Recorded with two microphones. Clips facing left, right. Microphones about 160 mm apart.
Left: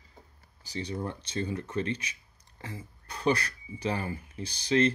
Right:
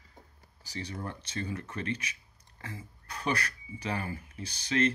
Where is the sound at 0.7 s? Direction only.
25° left (ahead or behind).